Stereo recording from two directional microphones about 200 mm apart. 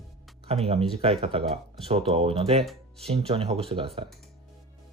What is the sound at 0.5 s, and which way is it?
Speech, 30° right (ahead or behind).